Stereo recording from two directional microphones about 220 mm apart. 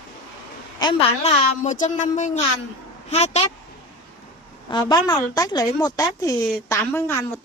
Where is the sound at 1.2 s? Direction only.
35° left (ahead or behind).